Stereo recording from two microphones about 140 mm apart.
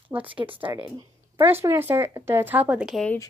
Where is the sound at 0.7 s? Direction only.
25° right (ahead or behind).